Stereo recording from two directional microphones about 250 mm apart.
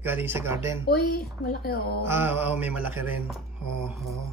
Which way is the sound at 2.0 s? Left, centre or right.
Centre.